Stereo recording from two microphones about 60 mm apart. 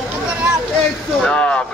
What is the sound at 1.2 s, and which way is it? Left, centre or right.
Speech, centre.